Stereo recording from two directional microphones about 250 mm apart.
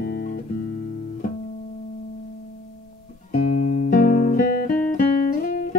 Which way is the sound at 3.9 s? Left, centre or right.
Left.